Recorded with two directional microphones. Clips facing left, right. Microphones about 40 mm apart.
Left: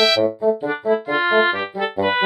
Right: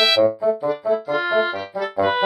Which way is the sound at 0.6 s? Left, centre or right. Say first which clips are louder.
Left 1 dB; left.